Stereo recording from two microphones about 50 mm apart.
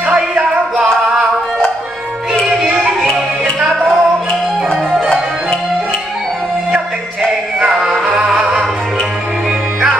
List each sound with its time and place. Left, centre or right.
0.3 s music: centre
2.4 s music: centre
7.6 s music: centre